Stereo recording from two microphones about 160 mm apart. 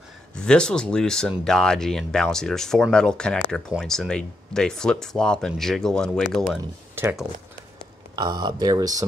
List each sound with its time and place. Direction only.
0.4 s speech: 5° left (ahead or behind)
8.2 s speech: 25° right (ahead or behind)